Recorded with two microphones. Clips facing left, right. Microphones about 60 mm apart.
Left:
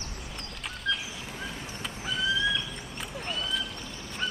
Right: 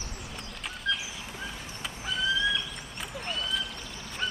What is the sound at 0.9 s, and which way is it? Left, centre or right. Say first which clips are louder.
Bird: even; centre.